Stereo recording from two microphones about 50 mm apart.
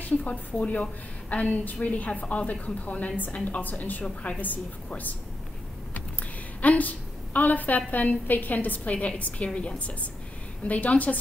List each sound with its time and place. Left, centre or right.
0.2 s a woman's voice: left
4.0 s a woman's voice: left
4.4 s a woman's voice: left
6.6 s a woman's voice: left